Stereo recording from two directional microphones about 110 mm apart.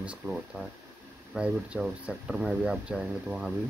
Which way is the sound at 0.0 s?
5° right (ahead or behind).